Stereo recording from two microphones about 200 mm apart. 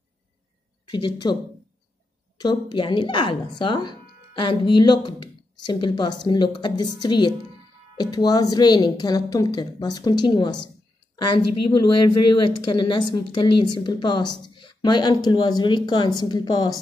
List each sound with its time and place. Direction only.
1.0 s speech: 20° left (ahead or behind)
2.3 s speech: 20° left (ahead or behind)